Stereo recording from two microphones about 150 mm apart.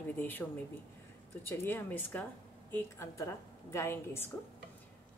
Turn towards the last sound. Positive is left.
turn(degrees=15)  # may be behind; listen again after turning